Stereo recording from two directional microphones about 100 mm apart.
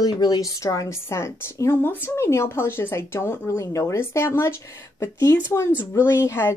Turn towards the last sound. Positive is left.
turn(degrees=25)  # may be behind; listen again after turning